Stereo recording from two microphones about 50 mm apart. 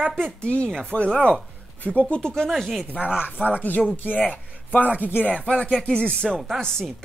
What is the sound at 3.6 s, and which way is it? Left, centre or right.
Speech, left.